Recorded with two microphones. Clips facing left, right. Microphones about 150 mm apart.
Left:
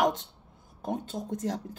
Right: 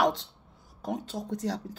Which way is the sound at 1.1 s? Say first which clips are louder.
Even; 20° left (ahead or behind).